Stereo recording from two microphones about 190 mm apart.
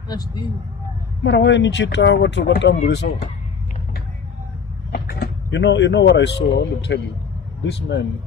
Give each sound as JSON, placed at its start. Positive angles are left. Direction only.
{"t": 0.1, "sound": "speech", "side_deg": 20}
{"t": 1.2, "sound": "speech", "side_deg": 70}
{"t": 2.8, "sound": "speech", "side_deg": 55}
{"t": 4.9, "sound": "speech", "side_deg": 60}